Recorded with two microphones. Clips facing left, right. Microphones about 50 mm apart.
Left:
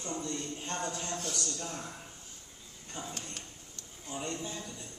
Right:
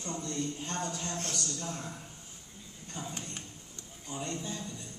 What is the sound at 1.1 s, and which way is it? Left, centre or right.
Speech, right.